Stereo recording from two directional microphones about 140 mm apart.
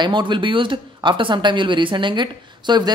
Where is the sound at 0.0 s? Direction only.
35° right (ahead or behind).